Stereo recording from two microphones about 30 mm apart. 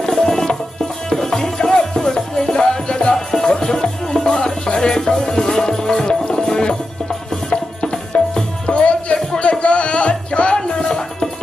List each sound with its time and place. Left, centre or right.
0.0 s music: centre
8.6 s music: left